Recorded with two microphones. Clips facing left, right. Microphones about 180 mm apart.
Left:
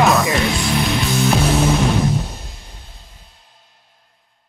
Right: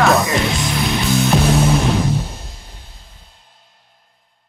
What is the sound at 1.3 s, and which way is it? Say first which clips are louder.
Music: right 3 dB; centre (ahead or behind).